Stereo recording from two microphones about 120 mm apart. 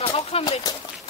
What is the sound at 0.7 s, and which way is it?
Speech, 30° left (ahead or behind).